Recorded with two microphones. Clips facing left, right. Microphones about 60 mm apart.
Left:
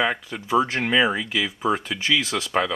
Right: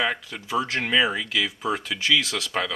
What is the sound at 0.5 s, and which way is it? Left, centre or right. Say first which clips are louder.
Speech: left 5 dB; left.